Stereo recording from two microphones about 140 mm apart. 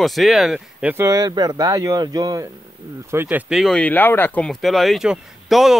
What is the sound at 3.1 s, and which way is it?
Speech, 15° right (ahead or behind).